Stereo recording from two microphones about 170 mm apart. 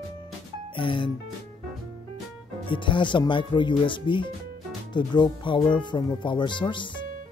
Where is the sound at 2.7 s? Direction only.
30° left (ahead or behind).